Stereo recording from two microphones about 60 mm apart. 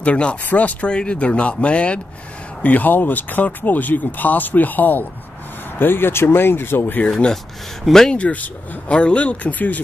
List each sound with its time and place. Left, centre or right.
0.0 s speech: centre; by 7.0 s left
7.1 s speech: centre
8.2 s speech: left